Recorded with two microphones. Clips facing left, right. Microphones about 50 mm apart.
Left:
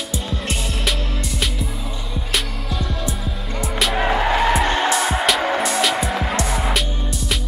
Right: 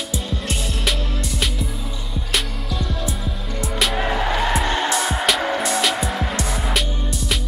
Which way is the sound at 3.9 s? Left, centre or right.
Centre.